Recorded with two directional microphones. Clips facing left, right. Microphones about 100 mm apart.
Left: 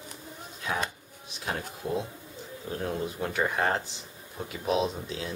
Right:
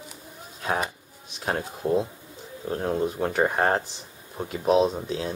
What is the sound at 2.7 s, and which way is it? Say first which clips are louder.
Speech: right 6 dB; 35° right (ahead or behind).